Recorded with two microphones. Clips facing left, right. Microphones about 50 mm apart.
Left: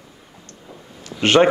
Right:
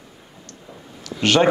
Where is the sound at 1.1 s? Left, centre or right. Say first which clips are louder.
Left 3 dB; left.